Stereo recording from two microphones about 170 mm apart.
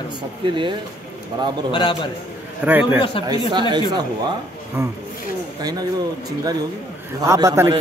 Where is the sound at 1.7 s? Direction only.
30° left (ahead or behind).